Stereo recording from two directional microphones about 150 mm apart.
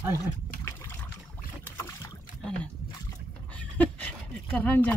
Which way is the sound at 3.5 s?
10° left (ahead or behind).